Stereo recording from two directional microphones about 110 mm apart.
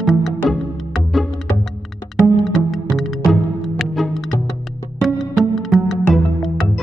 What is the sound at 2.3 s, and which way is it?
Music, centre (ahead or behind).